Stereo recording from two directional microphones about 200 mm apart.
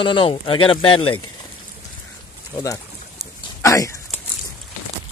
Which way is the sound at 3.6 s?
15° left (ahead or behind).